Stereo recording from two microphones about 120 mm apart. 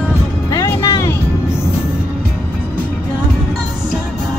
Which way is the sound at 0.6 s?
20° left (ahead or behind).